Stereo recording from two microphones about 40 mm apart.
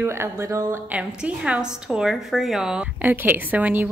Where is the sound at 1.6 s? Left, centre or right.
Centre.